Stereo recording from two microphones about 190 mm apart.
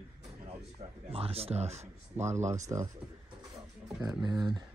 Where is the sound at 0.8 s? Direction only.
30° right (ahead or behind).